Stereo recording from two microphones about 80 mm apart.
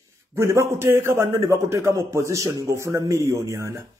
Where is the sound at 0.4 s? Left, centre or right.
Right.